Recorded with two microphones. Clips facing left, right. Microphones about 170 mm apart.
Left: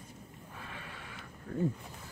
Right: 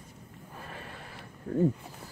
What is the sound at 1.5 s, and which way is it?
Wild animals, 35° right (ahead or behind).